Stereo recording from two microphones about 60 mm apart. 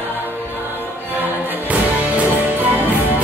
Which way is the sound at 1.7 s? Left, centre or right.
Right.